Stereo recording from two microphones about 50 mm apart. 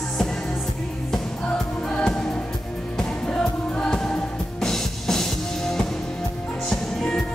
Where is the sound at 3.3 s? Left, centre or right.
Left.